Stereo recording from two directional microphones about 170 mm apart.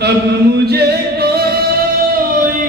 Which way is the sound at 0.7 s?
70° right (ahead or behind).